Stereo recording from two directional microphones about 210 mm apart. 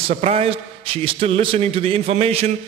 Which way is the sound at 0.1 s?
30° right (ahead or behind).